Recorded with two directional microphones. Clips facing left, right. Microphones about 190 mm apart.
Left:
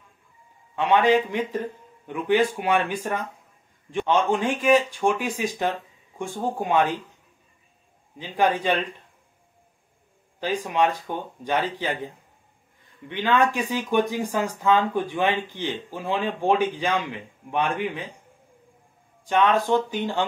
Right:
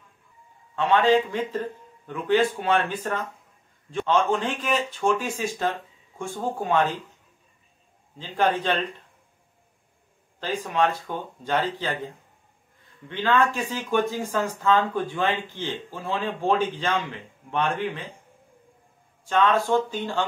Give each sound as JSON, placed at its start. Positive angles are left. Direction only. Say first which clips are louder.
{"t": 0.7, "sound": "a man's voice", "louder": "even", "side_deg": 15}
{"t": 8.2, "sound": "a man's voice", "louder": "left 1 dB", "side_deg": 10}
{"t": 10.4, "sound": "a man's voice", "louder": "left 1 dB", "side_deg": 15}
{"t": 13.1, "sound": "a man's voice", "louder": "left 1 dB", "side_deg": 15}
{"t": 19.2, "sound": "a man's voice", "louder": "left 1 dB", "side_deg": 15}